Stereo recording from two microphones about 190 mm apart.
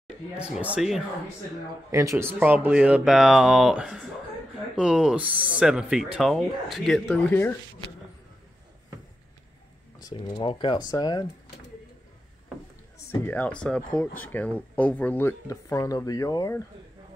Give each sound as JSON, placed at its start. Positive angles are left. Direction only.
{"t": 0.4, "sound": "speech", "side_deg": -5}
{"t": 1.9, "sound": "speech", "side_deg": -15}
{"t": 10.0, "sound": "speech", "side_deg": 25}
{"t": 13.1, "sound": "speech", "side_deg": 10}